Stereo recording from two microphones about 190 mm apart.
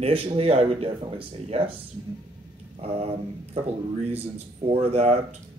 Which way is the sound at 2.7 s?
30° right (ahead or behind).